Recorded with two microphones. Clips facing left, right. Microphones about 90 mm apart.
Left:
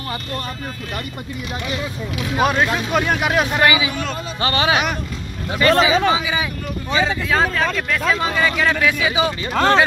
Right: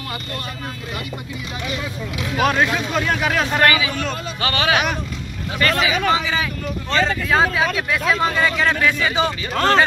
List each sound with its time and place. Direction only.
2.4 s speech: 5° left (ahead or behind)
2.9 s speech: 15° left (ahead or behind)
4.4 s speech: 25° left (ahead or behind)
6.0 s speech: 15° left (ahead or behind)
7.3 s speech: 5° right (ahead or behind)